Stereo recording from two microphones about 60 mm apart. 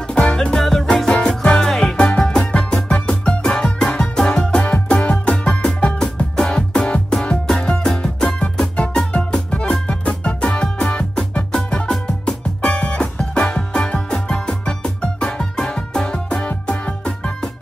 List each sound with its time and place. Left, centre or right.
0.1 s music: centre